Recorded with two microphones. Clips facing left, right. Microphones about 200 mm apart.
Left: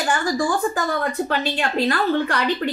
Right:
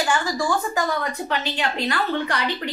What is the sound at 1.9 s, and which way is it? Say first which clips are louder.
Speech: left 4 dB; 45° left (ahead or behind).